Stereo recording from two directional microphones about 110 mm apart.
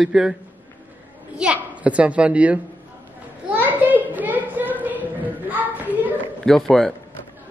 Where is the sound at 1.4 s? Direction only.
10° right (ahead or behind).